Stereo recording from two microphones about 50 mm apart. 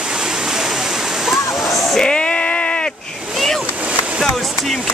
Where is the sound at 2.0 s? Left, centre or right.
Left.